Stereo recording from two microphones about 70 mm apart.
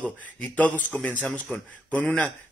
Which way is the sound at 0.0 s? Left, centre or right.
Left.